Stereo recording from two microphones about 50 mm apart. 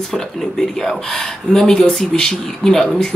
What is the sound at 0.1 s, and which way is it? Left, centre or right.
Speech, centre.